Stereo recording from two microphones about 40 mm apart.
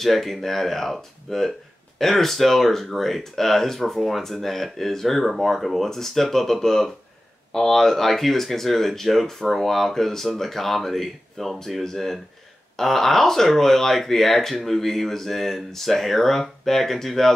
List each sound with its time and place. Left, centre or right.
0.0 s speech: centre